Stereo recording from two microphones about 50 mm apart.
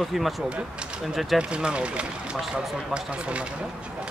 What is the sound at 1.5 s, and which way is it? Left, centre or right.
Speech, right.